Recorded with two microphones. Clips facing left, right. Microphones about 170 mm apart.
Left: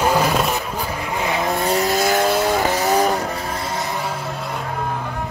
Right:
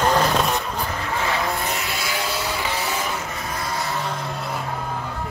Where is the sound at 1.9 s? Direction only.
45° left (ahead or behind).